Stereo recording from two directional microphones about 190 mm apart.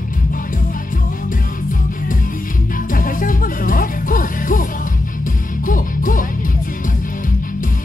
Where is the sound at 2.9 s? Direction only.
45° left (ahead or behind).